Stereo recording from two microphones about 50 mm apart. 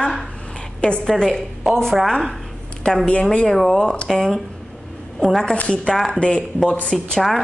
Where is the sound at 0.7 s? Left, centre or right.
Left.